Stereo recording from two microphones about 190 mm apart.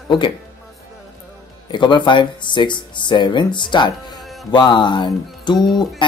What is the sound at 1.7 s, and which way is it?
Speech, 25° left (ahead or behind).